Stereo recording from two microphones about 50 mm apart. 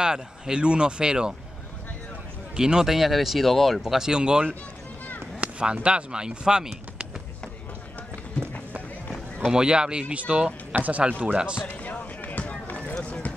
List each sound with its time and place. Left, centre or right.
0.0 s speech: centre
2.5 s speech: centre
3.8 s speech: centre
8.4 s run: left
9.5 s speech: centre
11.6 s basketball bounce: left
13.0 s clip-clop: left